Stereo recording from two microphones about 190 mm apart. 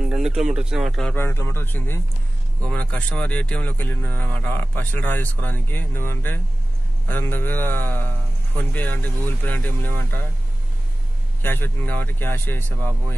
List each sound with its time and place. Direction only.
0.1 s speech: 5° right (ahead or behind)
11.4 s speech: 10° left (ahead or behind)